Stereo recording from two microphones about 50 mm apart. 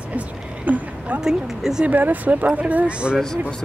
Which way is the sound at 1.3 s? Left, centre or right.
Centre.